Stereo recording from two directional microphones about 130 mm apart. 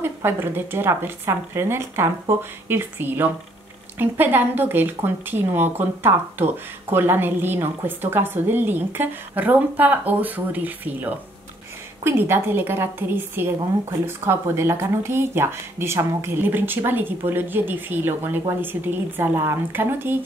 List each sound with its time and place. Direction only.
0.0 s a woman's voice: 15° right (ahead or behind)